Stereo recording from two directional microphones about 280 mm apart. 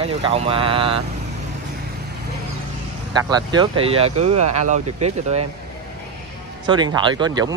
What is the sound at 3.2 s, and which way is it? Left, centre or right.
Speech, centre.